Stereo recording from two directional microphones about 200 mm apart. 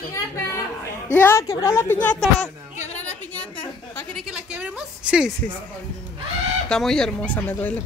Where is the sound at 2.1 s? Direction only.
35° left (ahead or behind).